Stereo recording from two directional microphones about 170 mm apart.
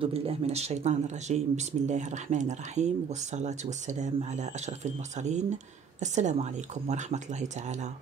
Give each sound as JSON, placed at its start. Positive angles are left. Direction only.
{"t": 0.0, "sound": "speech", "side_deg": -35}